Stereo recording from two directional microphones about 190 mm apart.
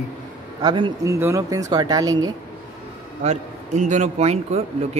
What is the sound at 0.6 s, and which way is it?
Speech, 25° right (ahead or behind).